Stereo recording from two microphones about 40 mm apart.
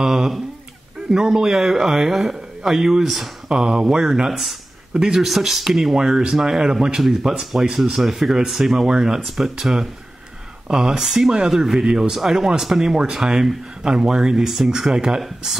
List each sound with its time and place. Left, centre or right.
0.0 s speech: centre
3.4 s speech: centre
4.9 s speech: centre
5.2 s speech: centre